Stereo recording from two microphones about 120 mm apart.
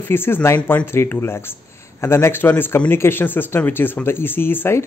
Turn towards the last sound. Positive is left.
turn(degrees=20)  # may be behind; listen again after turning